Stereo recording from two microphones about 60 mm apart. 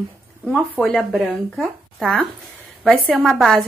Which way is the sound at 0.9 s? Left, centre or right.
Centre.